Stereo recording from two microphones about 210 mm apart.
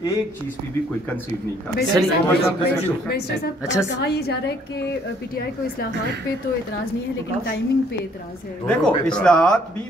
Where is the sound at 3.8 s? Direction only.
55° left (ahead or behind).